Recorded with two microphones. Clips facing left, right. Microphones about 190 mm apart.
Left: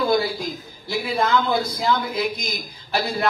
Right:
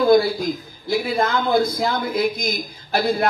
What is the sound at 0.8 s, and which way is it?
A man's voice, 50° right (ahead or behind).